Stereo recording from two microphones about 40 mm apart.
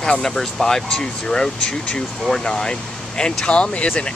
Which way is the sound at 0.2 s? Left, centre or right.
Centre.